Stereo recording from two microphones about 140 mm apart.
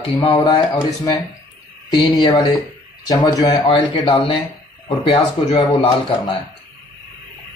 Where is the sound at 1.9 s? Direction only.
30° left (ahead or behind).